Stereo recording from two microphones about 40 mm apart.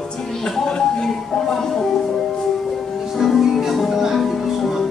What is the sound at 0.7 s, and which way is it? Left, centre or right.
Music, centre.